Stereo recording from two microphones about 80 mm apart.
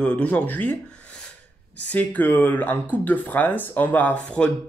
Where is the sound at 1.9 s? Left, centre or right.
Centre.